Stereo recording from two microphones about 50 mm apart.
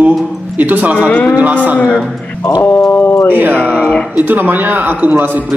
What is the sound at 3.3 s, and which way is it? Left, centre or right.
A man's voice, right.